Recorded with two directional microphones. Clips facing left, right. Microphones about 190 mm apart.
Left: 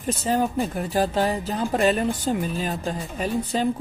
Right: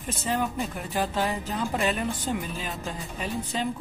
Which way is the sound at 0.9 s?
35° left (ahead or behind).